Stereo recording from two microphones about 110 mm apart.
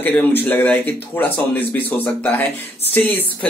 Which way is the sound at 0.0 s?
15° left (ahead or behind).